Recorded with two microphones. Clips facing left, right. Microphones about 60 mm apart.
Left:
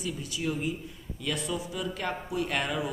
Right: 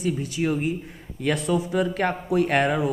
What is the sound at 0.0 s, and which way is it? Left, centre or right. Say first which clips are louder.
A woman's voice: right 8 dB; right.